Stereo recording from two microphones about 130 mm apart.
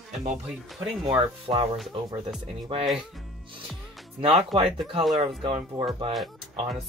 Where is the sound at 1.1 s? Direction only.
45° right (ahead or behind).